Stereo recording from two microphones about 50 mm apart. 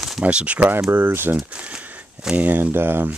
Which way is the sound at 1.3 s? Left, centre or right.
Right.